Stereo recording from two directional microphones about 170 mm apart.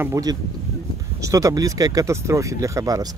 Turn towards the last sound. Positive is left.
turn(degrees=-20)  # may be behind; listen again after turning